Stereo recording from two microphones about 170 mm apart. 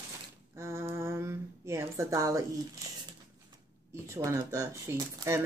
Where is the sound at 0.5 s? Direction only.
15° right (ahead or behind).